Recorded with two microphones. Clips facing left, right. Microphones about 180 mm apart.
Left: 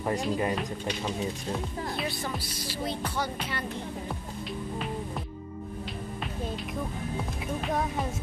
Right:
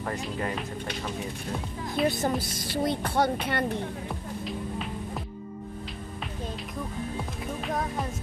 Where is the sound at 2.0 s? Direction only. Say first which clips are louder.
Right 7 dB; 50° right (ahead or behind).